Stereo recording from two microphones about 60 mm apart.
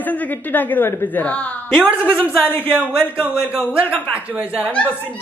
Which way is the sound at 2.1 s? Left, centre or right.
Left.